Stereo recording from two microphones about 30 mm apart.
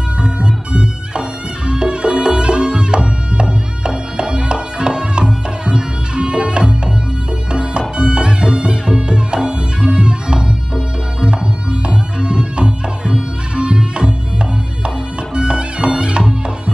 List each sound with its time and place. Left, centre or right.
0.2 s music: right
8.0 s music: right
15.3 s music: right